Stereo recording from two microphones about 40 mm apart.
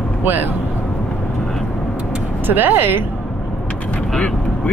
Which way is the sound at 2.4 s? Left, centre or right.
Right.